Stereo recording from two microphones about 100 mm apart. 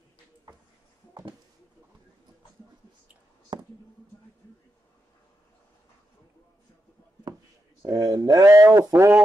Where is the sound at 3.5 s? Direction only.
50° right (ahead or behind).